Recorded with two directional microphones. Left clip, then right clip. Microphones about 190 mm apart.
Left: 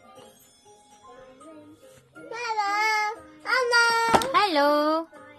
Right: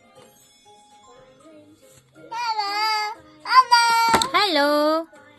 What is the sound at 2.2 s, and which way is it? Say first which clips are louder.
Music: right 3 dB; 10° left (ahead or behind).